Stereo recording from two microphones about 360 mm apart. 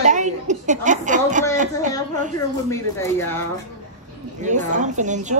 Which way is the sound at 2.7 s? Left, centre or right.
Centre.